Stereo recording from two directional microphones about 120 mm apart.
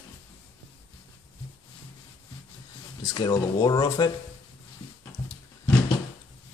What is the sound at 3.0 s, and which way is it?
Speech, 35° left (ahead or behind).